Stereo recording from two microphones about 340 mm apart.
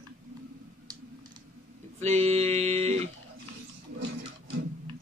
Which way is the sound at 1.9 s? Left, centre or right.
Centre.